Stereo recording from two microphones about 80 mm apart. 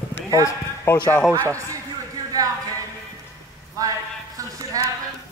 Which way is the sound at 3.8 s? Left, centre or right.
Right.